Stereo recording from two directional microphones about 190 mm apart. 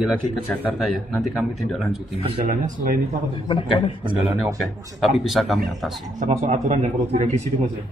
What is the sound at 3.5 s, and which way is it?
Speech, 25° left (ahead or behind).